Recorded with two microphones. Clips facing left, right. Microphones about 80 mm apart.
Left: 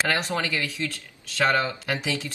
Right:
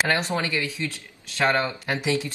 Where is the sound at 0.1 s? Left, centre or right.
Right.